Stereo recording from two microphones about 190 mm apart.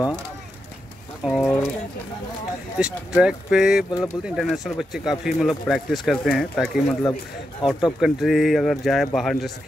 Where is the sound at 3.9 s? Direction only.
20° left (ahead or behind).